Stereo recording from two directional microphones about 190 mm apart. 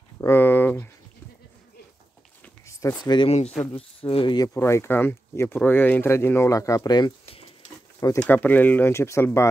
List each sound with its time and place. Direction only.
0.2 s a sound: 10° left (ahead or behind)
2.4 s speech: 15° left (ahead or behind)
4.6 s speech: 15° left (ahead or behind)